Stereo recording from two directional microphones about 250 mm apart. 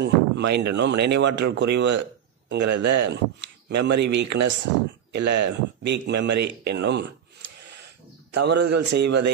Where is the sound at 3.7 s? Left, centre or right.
Right.